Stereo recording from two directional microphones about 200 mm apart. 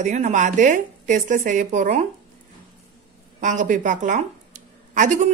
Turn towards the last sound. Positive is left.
turn(degrees=-40)  # may be behind; listen again after turning